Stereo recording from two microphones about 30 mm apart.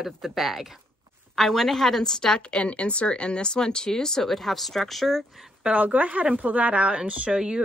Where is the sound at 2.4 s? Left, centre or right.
Left; by 5.3 s centre.